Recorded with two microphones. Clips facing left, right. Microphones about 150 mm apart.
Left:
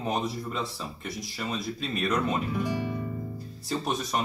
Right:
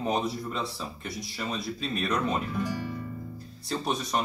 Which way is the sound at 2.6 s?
15° left (ahead or behind).